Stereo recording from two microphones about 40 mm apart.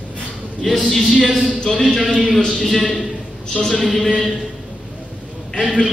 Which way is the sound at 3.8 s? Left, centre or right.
Centre.